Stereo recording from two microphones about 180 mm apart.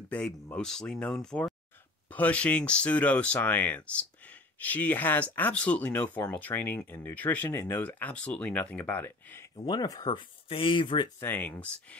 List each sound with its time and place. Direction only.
0.1 s speech: 5° left (ahead or behind)
9.7 s speech: 25° left (ahead or behind)
11.1 s speech: 10° left (ahead or behind)